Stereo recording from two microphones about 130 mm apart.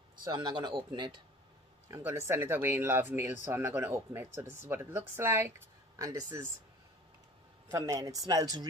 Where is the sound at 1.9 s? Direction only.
20° right (ahead or behind).